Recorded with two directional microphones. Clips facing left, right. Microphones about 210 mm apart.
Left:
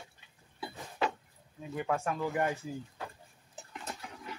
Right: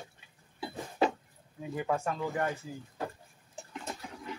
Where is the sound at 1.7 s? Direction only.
5° right (ahead or behind).